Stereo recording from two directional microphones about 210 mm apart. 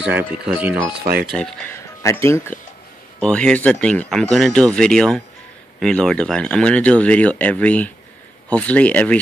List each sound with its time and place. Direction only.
0.1 s speech: 5° right (ahead or behind)
1.0 s speech: 45° right (ahead or behind)
1.3 s speech: 5° left (ahead or behind)